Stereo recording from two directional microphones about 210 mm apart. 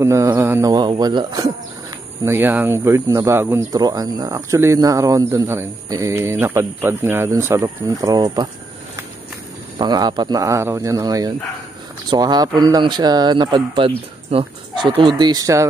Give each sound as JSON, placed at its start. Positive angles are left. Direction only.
{"t": 0.0, "sound": "speech", "side_deg": -15}
{"t": 9.8, "sound": "speech", "side_deg": -20}